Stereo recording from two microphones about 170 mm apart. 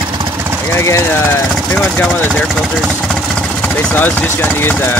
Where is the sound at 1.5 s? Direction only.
Centre (ahead or behind).